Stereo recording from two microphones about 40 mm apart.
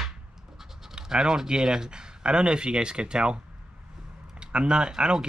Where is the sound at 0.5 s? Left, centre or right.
Centre.